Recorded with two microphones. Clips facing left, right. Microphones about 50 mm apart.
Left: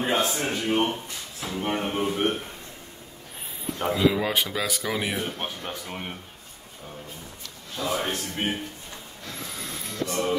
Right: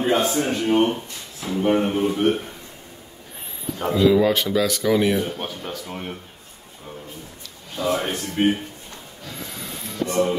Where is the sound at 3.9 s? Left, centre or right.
Centre.